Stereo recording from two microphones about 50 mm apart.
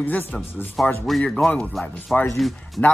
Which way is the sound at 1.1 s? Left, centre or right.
Centre.